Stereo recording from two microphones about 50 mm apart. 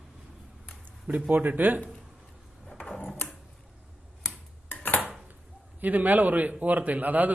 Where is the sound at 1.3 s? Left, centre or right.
Right.